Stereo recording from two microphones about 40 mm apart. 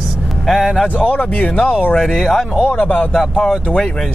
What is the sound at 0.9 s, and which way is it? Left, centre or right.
Speech, left.